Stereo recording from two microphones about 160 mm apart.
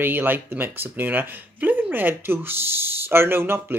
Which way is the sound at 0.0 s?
10° right (ahead or behind).